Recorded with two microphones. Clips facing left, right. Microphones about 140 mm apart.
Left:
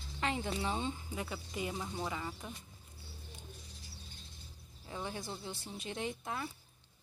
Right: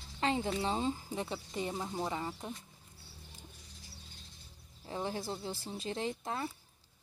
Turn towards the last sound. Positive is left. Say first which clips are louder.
# right 3 dB
turn(degrees=-35)  # may be behind; listen again after turning